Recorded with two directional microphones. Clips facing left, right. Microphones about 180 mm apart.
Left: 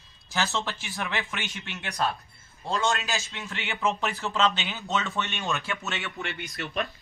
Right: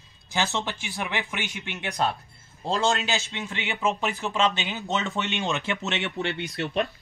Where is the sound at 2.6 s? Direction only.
30° right (ahead or behind).